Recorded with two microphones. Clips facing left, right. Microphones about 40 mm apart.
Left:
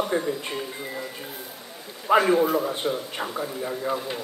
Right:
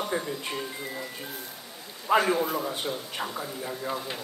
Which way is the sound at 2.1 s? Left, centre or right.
Centre.